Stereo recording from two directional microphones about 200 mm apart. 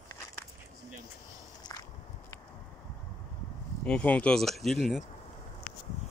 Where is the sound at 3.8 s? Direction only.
5° left (ahead or behind).